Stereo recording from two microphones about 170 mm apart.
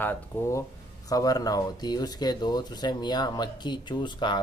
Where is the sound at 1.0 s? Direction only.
20° left (ahead or behind).